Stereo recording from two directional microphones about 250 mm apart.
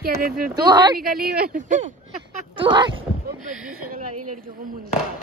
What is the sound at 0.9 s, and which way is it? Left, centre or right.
Speech, right.